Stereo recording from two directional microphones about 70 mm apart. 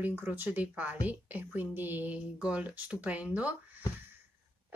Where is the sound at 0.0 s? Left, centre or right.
Right.